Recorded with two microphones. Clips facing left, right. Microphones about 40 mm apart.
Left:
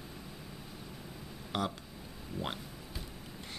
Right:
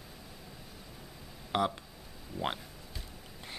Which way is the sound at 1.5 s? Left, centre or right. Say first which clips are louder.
Right 5 dB; right.